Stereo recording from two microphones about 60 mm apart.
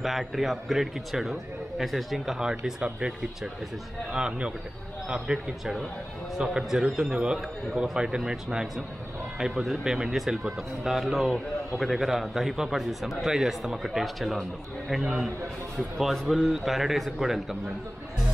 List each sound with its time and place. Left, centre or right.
0.0 s a man's voice: centre
4.1 s a man's voice: centre